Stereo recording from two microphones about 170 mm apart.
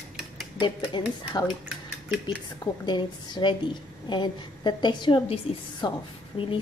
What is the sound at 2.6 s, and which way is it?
A woman's voice, 25° left (ahead or behind).